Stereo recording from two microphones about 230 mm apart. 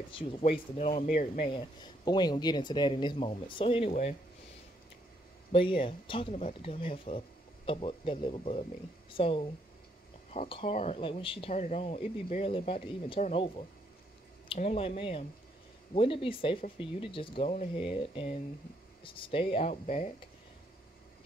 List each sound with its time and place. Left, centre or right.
0.1 s speech: left
1.5 s speech: centre
5.5 s speech: left